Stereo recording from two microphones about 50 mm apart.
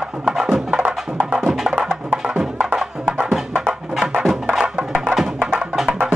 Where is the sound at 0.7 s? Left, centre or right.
Right.